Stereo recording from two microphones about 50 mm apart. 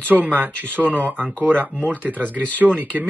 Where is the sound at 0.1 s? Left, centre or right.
Right.